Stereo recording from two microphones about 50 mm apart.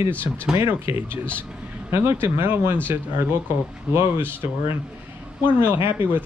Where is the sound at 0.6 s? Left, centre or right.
Right.